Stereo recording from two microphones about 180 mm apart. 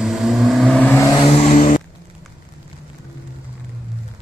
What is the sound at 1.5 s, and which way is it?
Vehicle, 45° left (ahead or behind).